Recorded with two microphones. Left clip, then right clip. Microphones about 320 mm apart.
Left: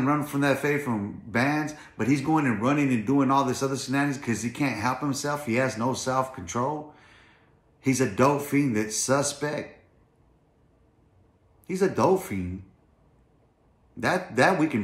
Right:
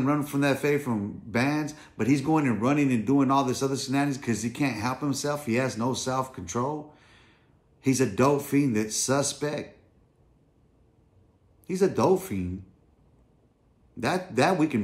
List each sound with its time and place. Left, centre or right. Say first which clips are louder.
0.0 s a man's voice: left 1 dB; centre
6.9 s a sound: left 3 dB; centre
7.8 s a man's voice: left 1 dB; centre
11.6 s a man's voice: even; centre
13.9 s a man's voice: left 2 dB; centre